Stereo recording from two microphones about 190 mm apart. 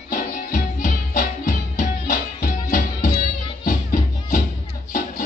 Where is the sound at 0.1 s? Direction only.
50° left (ahead or behind).